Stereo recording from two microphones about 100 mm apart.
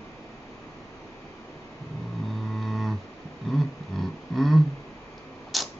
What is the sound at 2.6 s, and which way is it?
Music, 5° left (ahead or behind).